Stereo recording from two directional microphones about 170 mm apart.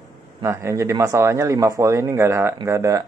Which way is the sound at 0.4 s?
15° right (ahead or behind).